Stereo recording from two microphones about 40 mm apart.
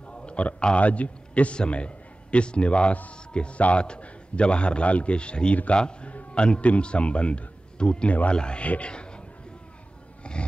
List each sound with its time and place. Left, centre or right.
0.1 s a sound: left
0.7 s a man's voice: left
10.3 s roar: left